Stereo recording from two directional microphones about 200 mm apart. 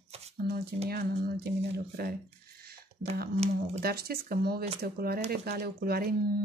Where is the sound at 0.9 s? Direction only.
50° right (ahead or behind).